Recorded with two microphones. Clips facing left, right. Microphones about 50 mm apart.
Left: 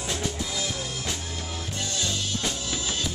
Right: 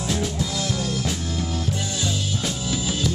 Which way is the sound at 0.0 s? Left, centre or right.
Centre.